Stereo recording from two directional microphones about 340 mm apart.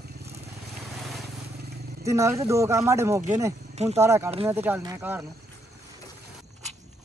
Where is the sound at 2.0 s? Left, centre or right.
Centre.